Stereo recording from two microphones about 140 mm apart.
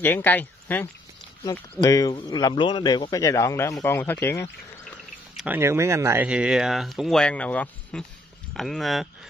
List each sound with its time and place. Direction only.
0.0 s speech: 15° left (ahead or behind)
1.4 s a man's voice: 25° left (ahead or behind)
5.5 s speech: 20° right (ahead or behind)
6.2 s speech: 5° right (ahead or behind)